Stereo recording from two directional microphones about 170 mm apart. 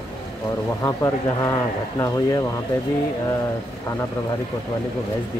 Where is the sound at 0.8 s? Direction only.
15° left (ahead or behind).